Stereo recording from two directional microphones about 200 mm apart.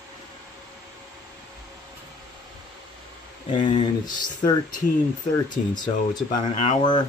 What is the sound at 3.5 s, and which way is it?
Speech, 25° left (ahead or behind).